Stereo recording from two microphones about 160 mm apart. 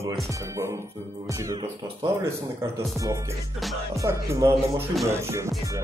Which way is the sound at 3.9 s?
20° right (ahead or behind).